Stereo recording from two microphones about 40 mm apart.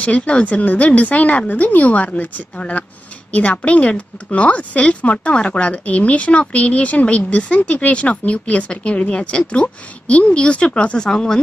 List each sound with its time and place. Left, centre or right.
0.0 s speech: left
11.0 s speech: centre